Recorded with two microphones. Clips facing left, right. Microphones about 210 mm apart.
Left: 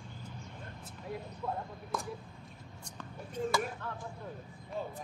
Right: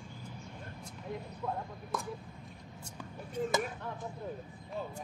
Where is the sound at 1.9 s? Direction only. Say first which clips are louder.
Even; centre (ahead or behind).